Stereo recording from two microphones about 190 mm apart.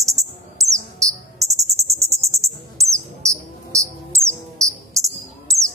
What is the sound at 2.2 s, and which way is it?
Cricket, 15° right (ahead or behind).